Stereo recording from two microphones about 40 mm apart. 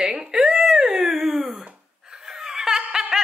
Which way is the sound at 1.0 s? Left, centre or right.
Centre.